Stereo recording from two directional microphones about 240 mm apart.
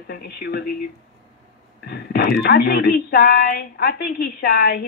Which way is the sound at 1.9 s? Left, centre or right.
Left.